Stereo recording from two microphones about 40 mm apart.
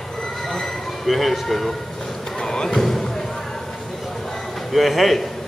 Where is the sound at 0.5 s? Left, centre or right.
Centre.